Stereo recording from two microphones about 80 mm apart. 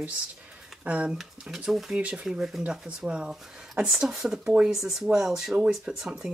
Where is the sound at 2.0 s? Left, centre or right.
Centre.